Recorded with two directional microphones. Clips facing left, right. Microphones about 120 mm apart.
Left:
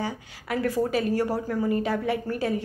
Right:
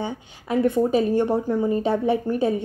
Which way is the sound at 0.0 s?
25° right (ahead or behind).